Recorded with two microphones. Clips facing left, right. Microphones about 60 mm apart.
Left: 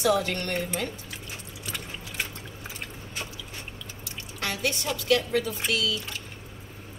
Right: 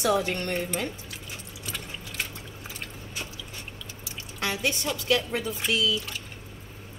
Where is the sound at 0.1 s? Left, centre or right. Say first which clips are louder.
Even; right.